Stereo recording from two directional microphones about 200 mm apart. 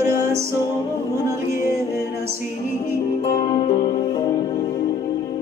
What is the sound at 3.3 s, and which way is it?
Music, 25° left (ahead or behind).